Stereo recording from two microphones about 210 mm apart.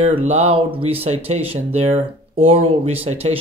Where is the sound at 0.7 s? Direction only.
30° right (ahead or behind).